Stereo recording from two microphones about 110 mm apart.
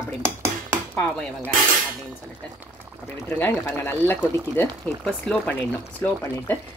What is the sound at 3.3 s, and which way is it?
Speech, 20° left (ahead or behind).